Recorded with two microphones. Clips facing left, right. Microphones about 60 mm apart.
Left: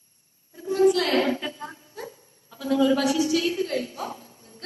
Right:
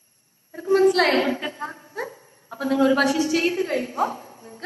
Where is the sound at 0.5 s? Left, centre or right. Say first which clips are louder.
Right 3 dB; right.